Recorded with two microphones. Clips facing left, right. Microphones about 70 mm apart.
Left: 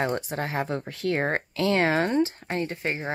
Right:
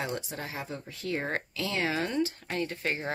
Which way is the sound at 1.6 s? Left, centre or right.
Left.